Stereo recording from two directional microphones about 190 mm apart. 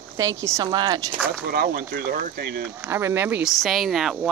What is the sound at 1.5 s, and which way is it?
Speech, 50° right (ahead or behind).